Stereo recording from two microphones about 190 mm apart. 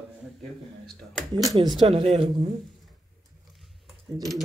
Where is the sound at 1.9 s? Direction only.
30° right (ahead or behind).